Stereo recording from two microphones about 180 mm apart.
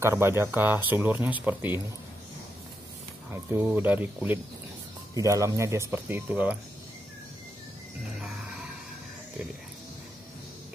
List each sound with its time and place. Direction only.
0.0 s speech: 15° right (ahead or behind)
3.3 s speech: 10° right (ahead or behind)